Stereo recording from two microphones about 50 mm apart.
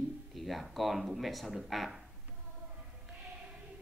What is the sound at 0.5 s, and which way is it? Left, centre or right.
Speech, centre.